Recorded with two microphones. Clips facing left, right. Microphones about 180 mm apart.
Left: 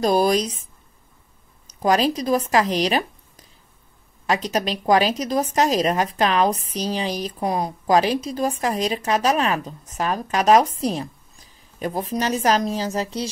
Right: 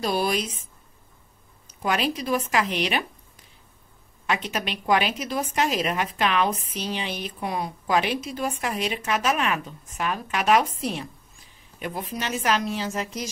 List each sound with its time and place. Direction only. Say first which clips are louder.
0.0 s a woman's voice: left 7 dB; 40° left (ahead or behind)
1.7 s a woman's voice: left 6 dB; 40° left (ahead or behind)